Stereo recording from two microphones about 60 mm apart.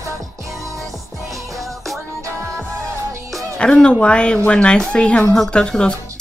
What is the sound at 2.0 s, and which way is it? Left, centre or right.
Music, right.